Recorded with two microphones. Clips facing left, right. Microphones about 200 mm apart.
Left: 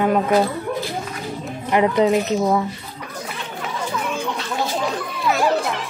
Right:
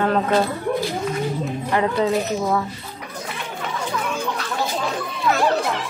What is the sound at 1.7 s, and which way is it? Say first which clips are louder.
Speech: left 4 dB; 15° left (ahead or behind).